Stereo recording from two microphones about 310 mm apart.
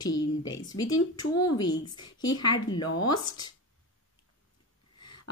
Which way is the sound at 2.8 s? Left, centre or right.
Left.